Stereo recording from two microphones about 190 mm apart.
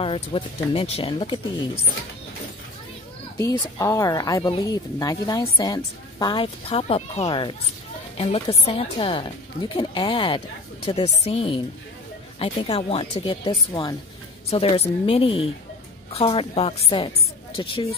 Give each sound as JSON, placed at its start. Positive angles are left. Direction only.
{"t": 0.0, "sound": "speech", "side_deg": 30}
{"t": 3.3, "sound": "a woman's voice", "side_deg": 20}